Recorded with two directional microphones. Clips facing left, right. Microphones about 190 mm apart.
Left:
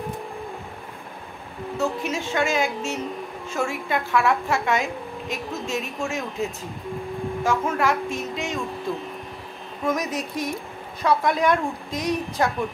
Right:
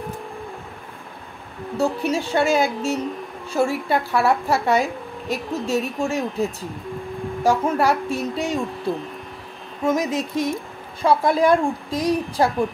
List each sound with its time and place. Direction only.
1.8 s a woman's voice: 35° right (ahead or behind)
7.4 s a woman's voice: 35° right (ahead or behind)
9.8 s music: 25° right (ahead or behind)
11.0 s a woman's voice: 30° right (ahead or behind)